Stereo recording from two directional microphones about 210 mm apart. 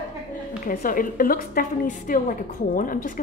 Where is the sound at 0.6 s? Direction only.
40° left (ahead or behind).